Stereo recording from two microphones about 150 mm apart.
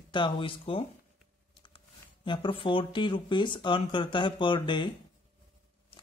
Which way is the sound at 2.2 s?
35° left (ahead or behind).